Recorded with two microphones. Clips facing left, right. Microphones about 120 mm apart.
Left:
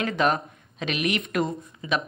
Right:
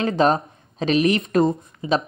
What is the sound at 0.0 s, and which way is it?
A woman's voice, 30° right (ahead or behind).